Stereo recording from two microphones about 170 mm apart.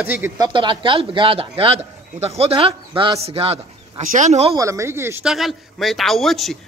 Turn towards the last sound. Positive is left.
turn(degrees=0)  # may be behind; listen again after turning